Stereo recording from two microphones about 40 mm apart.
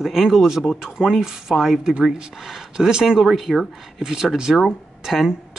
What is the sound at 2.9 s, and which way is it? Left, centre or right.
Speech, centre.